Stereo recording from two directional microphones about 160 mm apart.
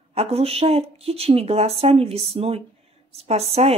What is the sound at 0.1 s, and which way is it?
Speech, 40° right (ahead or behind).